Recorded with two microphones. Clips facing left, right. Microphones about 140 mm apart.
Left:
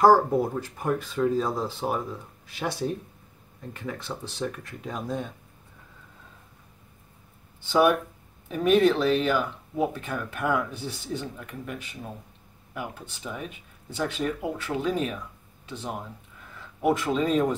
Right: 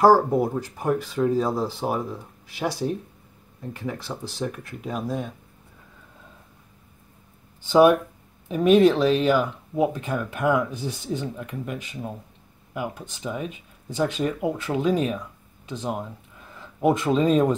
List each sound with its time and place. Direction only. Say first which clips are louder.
0.0 s speech: right 2 dB; 10° right (ahead or behind)
3.7 s speech: right 2 dB; 10° right (ahead or behind)
8.5 s speech: right 4 dB; 20° right (ahead or behind)